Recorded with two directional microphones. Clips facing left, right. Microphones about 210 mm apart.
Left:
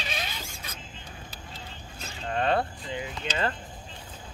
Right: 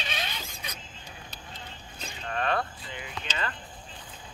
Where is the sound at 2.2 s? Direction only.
30° left (ahead or behind).